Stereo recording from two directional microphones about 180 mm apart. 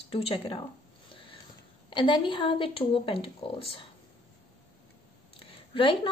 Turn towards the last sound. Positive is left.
turn(degrees=30)  # may be behind; listen again after turning